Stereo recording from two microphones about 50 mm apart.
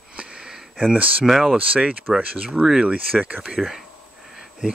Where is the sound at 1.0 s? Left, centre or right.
Right.